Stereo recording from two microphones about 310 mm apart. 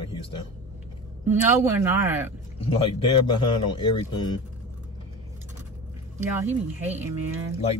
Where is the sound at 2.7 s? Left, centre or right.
Centre.